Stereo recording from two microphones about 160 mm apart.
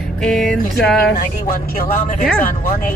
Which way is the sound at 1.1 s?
60° left (ahead or behind).